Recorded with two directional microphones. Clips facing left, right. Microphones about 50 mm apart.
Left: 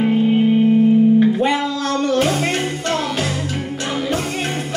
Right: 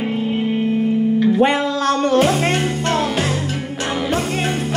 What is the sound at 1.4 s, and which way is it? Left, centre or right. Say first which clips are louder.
Music: right 2 dB; right.